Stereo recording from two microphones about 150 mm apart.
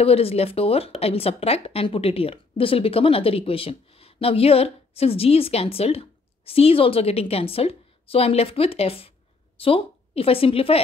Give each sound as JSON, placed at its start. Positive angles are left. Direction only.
{"t": 0.0, "sound": "a woman's voice", "side_deg": 40}